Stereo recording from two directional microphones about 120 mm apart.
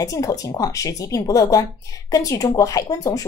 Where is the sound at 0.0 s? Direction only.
30° left (ahead or behind).